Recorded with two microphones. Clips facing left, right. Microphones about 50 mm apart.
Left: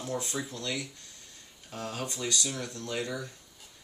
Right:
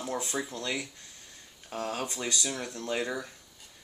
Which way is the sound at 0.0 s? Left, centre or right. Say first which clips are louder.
Right 1 dB; right.